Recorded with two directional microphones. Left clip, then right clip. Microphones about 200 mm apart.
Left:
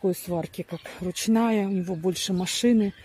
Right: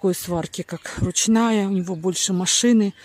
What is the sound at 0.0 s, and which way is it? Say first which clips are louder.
Speech: right 4 dB; 25° right (ahead or behind).